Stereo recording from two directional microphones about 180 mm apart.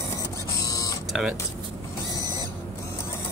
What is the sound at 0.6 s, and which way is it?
Printer, 20° left (ahead or behind).